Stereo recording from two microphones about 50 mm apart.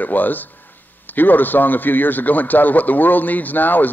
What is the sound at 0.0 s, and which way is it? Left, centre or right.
A man's voice, left.